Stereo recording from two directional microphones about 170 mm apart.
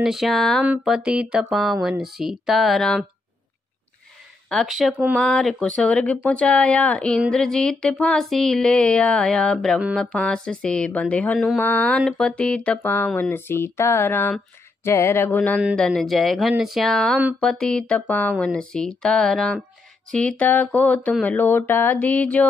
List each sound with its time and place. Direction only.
0.0 s speech: centre (ahead or behind)
4.5 s speech: centre (ahead or behind)
10.0 s mantra: 5° left (ahead or behind)
15.7 s speech: 5° left (ahead or behind)
17.4 s mantra: 5° left (ahead or behind)
18.4 s speech: 5° left (ahead or behind)
20.1 s mantra: 5° left (ahead or behind)